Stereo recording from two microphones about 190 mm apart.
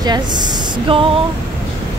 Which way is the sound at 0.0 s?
20° right (ahead or behind).